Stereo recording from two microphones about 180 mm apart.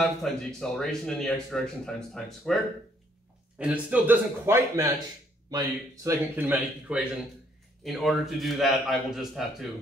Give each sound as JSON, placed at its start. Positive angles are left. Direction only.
{"t": 0.0, "sound": "a man's voice", "side_deg": 0}
{"t": 6.3, "sound": "a man's voice", "side_deg": -5}